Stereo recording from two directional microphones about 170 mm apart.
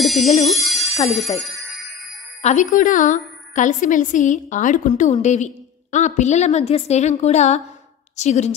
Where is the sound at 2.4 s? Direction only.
45° left (ahead or behind).